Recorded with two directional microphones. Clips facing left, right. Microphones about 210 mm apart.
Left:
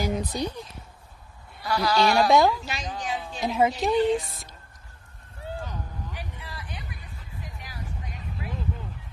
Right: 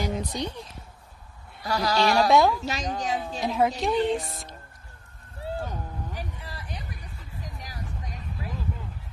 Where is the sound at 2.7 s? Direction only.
40° right (ahead or behind).